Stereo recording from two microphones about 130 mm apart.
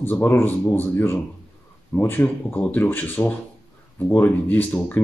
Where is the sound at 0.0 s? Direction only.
15° left (ahead or behind).